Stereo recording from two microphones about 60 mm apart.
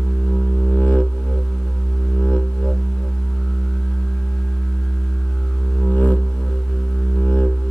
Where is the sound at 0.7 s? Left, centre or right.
Left.